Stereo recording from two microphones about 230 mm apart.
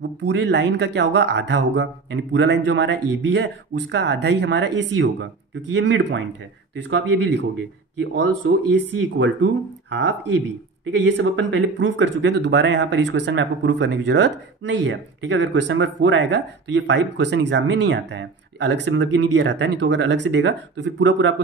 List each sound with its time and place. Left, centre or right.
0.2 s speech: right